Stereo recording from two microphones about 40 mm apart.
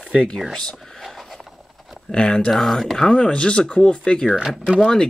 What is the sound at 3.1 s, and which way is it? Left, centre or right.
Speech, left.